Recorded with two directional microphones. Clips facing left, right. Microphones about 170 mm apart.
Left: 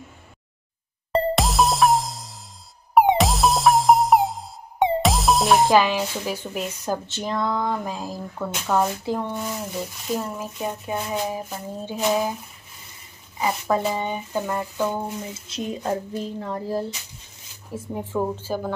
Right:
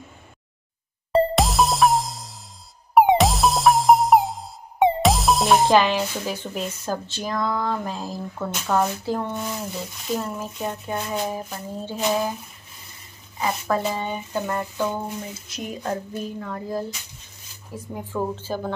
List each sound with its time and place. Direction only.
1.1 s music: centre (ahead or behind); by 7.8 s 20° left (ahead or behind)
7.8 s speech: 10° left (ahead or behind)
9.0 s speech: 15° left (ahead or behind)
13.4 s speech: 15° left (ahead or behind)
15.4 s speech: 25° left (ahead or behind)
18.2 s speech: 10° left (ahead or behind)